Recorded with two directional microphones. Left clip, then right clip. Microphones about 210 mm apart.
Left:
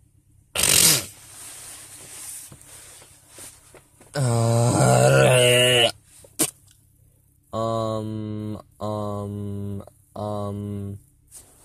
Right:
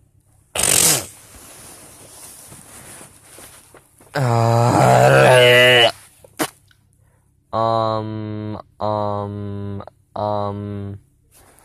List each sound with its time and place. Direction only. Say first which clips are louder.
0.5 s fart: right 1 dB; 20° left (ahead or behind)
4.1 s groan: right 6 dB; 10° left (ahead or behind)
7.4 s mantra: right 7 dB; 10° left (ahead or behind)